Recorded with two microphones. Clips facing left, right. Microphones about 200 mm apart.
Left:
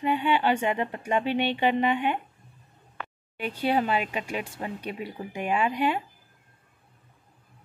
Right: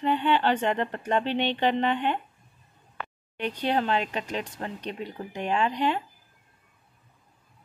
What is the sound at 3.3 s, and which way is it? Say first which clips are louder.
Speech: left 1 dB; 5° left (ahead or behind).